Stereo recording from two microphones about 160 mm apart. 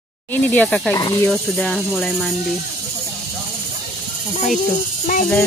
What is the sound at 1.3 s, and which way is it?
Speech, centre (ahead or behind).